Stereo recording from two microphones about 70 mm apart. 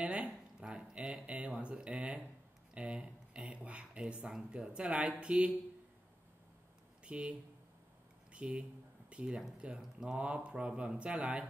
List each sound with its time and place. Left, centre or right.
0.0 s a sound: centre
4.3 s speech: centre
7.1 s speech: centre